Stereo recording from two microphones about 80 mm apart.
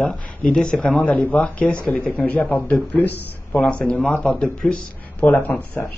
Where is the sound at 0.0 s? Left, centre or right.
Centre.